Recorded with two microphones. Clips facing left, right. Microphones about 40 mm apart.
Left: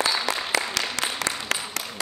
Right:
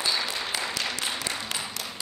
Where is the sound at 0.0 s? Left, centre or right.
Left.